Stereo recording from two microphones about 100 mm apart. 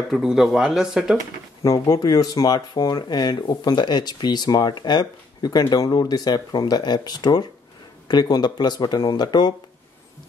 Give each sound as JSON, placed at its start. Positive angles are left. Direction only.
{"t": 0.1, "sound": "speech", "side_deg": -5}
{"t": 1.6, "sound": "speech", "side_deg": 35}